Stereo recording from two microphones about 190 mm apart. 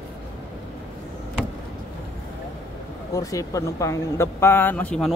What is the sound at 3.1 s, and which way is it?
A woman's voice, 20° left (ahead or behind).